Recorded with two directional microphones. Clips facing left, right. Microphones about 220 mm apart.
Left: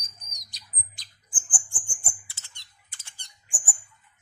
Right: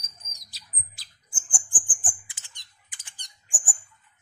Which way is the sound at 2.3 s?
15° right (ahead or behind).